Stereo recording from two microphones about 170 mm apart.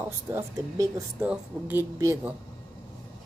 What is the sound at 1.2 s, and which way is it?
Speech, 10° right (ahead or behind).